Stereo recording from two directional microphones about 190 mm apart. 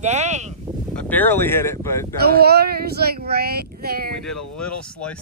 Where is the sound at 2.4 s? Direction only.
55° right (ahead or behind).